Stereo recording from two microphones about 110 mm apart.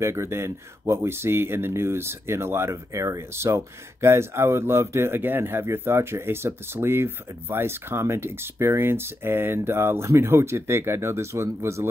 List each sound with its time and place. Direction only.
0.0 s speech: 25° right (ahead or behind)